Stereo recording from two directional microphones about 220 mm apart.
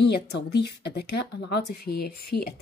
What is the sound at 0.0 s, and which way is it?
Speech, 50° left (ahead or behind).